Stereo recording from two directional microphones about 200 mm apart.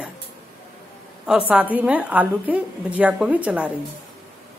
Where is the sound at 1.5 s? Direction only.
10° right (ahead or behind).